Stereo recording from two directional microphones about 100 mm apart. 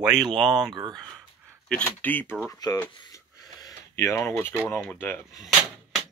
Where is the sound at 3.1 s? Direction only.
35° left (ahead or behind).